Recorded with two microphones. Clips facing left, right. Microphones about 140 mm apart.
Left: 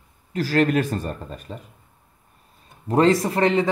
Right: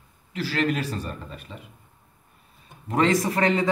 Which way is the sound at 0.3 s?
45° left (ahead or behind).